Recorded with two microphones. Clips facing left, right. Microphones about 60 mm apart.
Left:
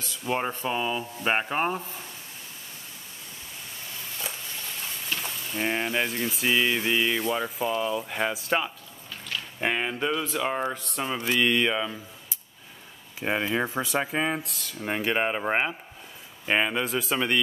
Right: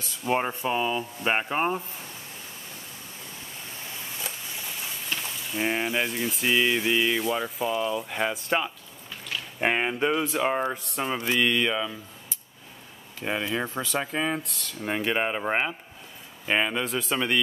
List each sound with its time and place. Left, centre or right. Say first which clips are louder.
0.2 s speech: right 2 dB; centre
4.2 s a sound: left 2 dB; centre
4.6 s speech: even; centre
9.6 s speech: right 3 dB; centre
11.4 s speech: left 1 dB; centre
13.2 s speech: left 2 dB; centre
14.4 s speech: even; centre